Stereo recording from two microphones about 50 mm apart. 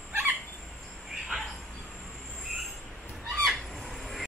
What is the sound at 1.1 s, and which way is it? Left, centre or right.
Dog, centre.